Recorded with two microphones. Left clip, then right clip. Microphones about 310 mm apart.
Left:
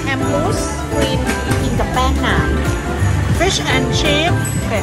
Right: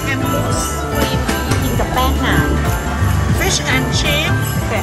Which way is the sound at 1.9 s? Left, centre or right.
Centre.